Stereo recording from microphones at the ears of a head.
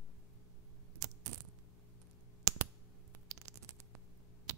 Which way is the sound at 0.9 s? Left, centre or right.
Right.